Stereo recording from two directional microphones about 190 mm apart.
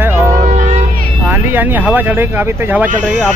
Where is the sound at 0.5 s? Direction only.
40° right (ahead or behind).